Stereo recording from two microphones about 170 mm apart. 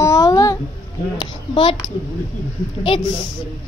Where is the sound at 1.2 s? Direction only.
30° left (ahead or behind).